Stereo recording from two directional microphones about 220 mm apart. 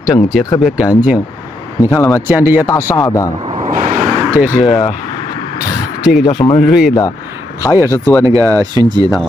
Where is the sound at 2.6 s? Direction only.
15° left (ahead or behind).